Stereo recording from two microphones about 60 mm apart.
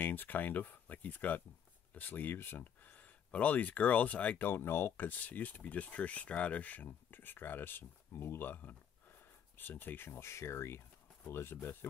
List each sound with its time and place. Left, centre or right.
0.0 s speech: left
4.5 s speech: left
5.0 s speech: left